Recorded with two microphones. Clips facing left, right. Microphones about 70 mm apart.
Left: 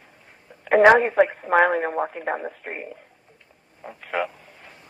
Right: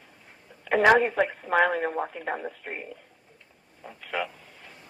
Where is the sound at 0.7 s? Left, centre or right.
Left.